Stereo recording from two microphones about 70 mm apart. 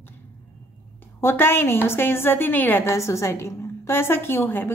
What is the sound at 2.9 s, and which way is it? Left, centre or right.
A woman's voice, left.